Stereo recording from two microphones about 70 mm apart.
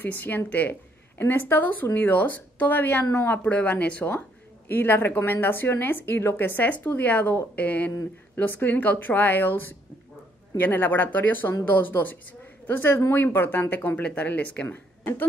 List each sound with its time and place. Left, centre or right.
0.0 s speech: left
4.6 s speech: left
10.6 s a woman's voice: left
14.7 s speech: left